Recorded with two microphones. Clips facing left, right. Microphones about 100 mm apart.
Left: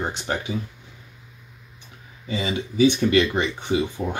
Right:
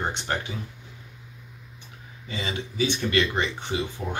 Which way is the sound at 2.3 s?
15° left (ahead or behind).